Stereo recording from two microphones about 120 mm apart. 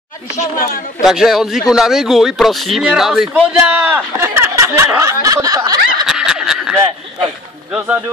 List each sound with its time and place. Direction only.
1.0 s a man's voice: 5° right (ahead or behind)
3.6 s speech: 15° right (ahead or behind); by 6.0 s 30° right (ahead or behind)
6.0 s snicker: 5° right (ahead or behind)
7.7 s speech: 15° right (ahead or behind)